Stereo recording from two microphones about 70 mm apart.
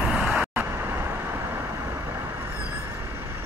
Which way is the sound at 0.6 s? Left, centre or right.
Right.